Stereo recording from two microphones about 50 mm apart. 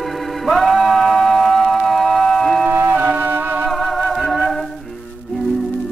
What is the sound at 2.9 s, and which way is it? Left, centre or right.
Music, right.